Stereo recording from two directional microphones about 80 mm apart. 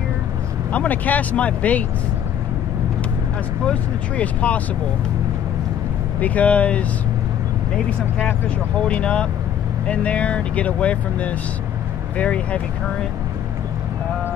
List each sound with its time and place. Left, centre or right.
0.7 s speech: centre
4.2 s speech: centre
6.1 s speech: centre
8.7 s speech: centre